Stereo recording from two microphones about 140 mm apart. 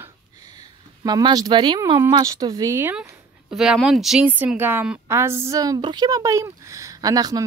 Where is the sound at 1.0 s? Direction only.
30° right (ahead or behind).